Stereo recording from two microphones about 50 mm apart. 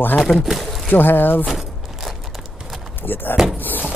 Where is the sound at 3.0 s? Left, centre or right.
Left.